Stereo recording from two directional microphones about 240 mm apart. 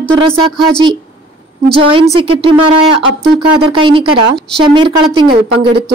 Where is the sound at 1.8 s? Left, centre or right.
Right.